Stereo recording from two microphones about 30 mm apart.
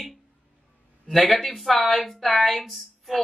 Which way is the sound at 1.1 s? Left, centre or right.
Centre.